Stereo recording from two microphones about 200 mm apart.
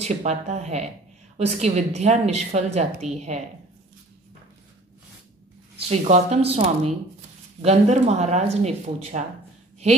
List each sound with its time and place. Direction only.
0.0 s a woman's voice: 35° right (ahead or behind)
5.8 s a woman's voice: 30° right (ahead or behind)